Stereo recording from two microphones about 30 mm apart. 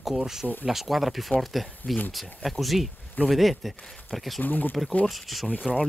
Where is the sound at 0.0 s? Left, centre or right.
Centre.